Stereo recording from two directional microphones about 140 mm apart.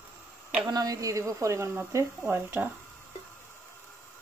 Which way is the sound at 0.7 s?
25° right (ahead or behind).